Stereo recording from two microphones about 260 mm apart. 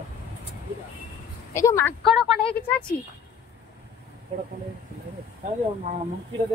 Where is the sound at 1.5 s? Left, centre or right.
Centre.